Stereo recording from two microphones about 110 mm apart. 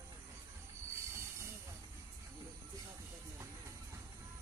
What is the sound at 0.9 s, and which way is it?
Train wheels squealing, 25° right (ahead or behind).